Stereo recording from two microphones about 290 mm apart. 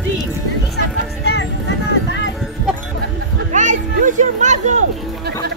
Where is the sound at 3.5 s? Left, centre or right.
Right.